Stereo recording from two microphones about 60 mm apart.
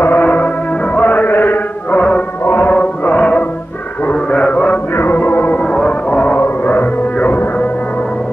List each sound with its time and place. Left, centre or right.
0.0 s music: left
0.9 s chant: left
2.0 s music: left
2.4 s music: left
4.0 s a sound: left
4.9 s music: left
5.6 s music: centre